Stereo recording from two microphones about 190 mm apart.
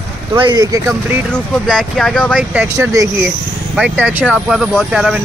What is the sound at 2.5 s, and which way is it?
Speech, 15° right (ahead or behind).